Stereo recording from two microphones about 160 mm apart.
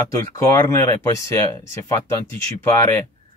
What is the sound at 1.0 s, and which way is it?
Speech, 20° left (ahead or behind).